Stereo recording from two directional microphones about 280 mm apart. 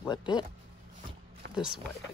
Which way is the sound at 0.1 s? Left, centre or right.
Centre.